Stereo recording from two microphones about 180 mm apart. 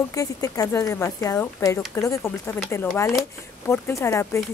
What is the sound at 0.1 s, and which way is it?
A woman's voice, 20° left (ahead or behind).